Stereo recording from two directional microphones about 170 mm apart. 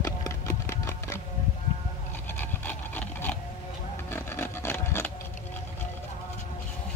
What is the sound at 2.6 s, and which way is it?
Wood, 10° left (ahead or behind).